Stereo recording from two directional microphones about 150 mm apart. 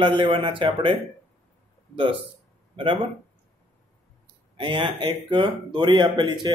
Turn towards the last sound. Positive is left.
turn(degrees=-30)  # may be behind; listen again after turning